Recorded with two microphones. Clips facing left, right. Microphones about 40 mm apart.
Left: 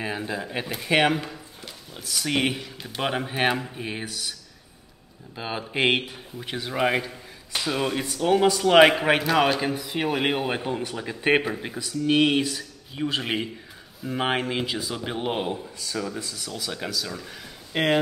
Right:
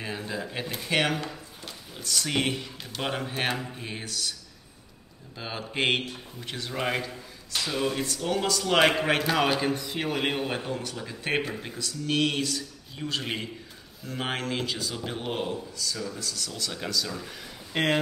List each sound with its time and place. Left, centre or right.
0.0 s a man's voice: centre
9.2 s a man's voice: centre